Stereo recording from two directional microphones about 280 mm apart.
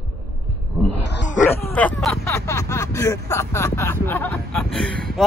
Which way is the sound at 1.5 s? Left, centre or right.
Centre.